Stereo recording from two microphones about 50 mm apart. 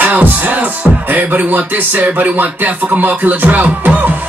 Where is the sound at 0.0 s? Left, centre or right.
Right.